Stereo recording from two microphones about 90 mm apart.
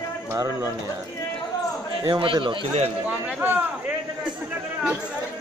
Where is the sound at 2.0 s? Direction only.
60° right (ahead or behind).